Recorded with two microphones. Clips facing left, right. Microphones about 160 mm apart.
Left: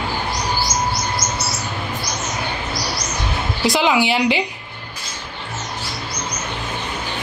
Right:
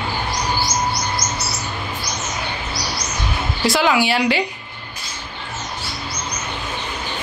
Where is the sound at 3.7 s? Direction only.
20° left (ahead or behind).